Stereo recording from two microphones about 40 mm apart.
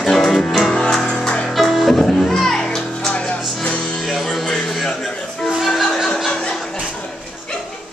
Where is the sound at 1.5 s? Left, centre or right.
Centre.